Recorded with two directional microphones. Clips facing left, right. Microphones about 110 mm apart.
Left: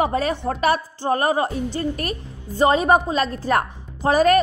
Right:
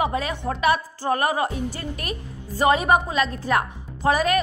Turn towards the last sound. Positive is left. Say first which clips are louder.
# left 4 dB
turn(degrees=40)  # may be behind; listen again after turning